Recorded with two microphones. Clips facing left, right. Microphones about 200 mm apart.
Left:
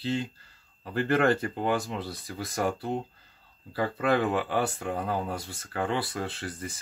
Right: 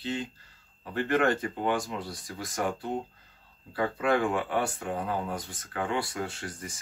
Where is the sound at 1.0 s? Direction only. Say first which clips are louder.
Left 2 dB; 35° left (ahead or behind).